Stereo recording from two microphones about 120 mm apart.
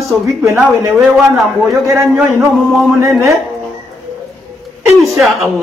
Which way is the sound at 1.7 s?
Centre (ahead or behind).